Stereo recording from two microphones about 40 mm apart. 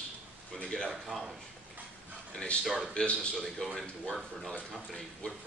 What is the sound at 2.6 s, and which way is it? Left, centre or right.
Speech, centre.